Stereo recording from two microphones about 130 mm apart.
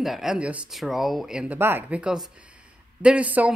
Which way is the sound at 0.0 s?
Centre (ahead or behind).